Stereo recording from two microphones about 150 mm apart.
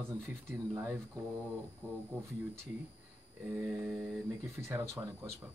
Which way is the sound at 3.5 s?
10° right (ahead or behind).